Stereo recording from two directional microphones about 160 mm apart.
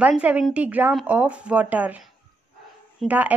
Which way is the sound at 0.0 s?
10° right (ahead or behind).